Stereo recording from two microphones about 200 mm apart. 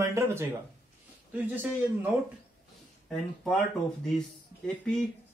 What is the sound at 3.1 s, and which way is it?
A man's voice, 5° left (ahead or behind).